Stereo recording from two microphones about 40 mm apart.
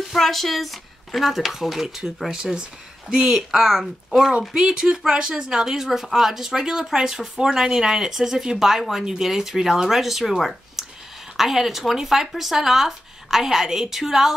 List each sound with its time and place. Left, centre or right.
0.1 s speech: centre
4.6 s speech: centre
5.7 s speech: centre